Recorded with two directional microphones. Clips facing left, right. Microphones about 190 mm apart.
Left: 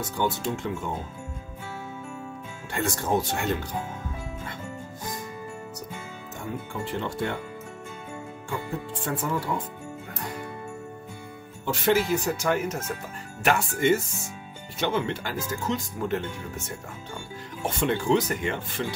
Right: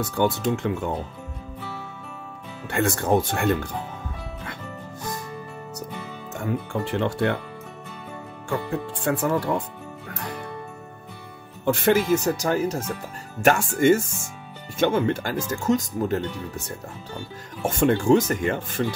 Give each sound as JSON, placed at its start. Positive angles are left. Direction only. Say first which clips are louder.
{"t": 0.0, "sound": "speech", "louder": "right 5 dB", "side_deg": -65}
{"t": 2.7, "sound": "speech", "louder": "right 5 dB", "side_deg": -60}
{"t": 6.7, "sound": "speech", "louder": "right 5 dB", "side_deg": -70}
{"t": 8.5, "sound": "speech", "louder": "right 6 dB", "side_deg": -70}
{"t": 11.6, "sound": "speech", "louder": "right 4 dB", "side_deg": -50}
{"t": 13.4, "sound": "speech", "louder": "right 5 dB", "side_deg": -45}
{"t": 17.6, "sound": "speech", "louder": "right 6 dB", "side_deg": -50}